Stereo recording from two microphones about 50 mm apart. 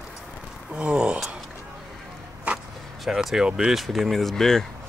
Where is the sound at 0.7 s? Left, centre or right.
Centre.